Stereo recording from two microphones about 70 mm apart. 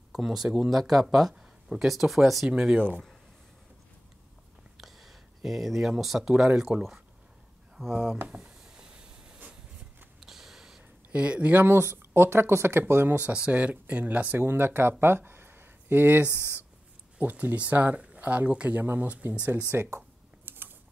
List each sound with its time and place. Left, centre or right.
0.1 s speech: centre
2.5 s speech: centre
4.7 s speech: centre
8.4 s hiss: centre
10.2 s a sound: centre
11.1 s speech: centre; by 13.2 s right
13.3 s speech: centre
14.4 s speech: right
20.4 s typing: right